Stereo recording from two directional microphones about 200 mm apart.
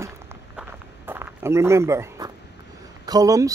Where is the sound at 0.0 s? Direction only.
10° right (ahead or behind).